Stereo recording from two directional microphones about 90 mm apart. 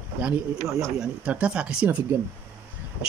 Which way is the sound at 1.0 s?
15° right (ahead or behind).